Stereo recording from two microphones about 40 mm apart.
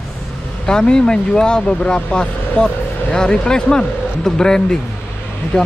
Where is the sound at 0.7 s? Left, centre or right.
Centre.